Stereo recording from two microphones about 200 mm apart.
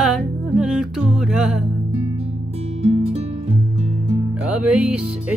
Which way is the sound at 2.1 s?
30° right (ahead or behind).